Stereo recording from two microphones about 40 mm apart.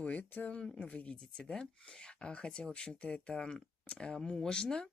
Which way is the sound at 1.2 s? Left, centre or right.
Left.